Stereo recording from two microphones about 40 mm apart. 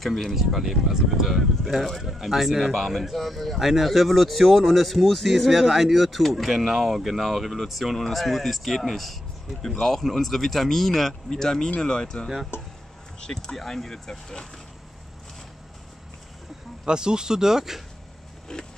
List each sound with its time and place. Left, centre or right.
0.0 s speech: centre
1.6 s speech: centre
16.8 s speech: right
18.5 s speech: centre